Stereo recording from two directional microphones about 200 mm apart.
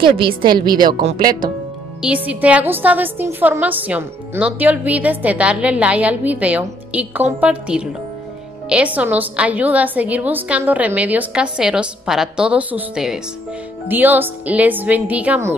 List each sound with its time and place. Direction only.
0.0 s a woman's voice: 25° right (ahead or behind)
1.0 s speech: 45° right (ahead or behind)
2.0 s a woman's voice: 5° right (ahead or behind)